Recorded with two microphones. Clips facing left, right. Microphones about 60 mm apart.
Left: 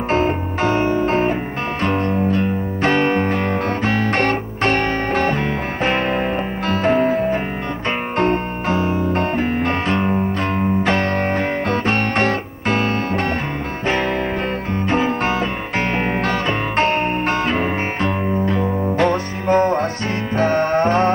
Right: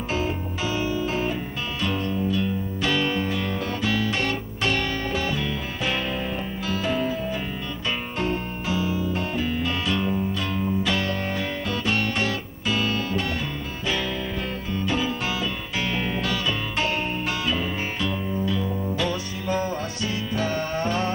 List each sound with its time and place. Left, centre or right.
0.1 s music: left
14.7 s music: left